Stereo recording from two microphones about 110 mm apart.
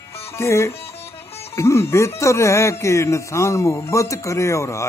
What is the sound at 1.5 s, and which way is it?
Speech, 25° left (ahead or behind).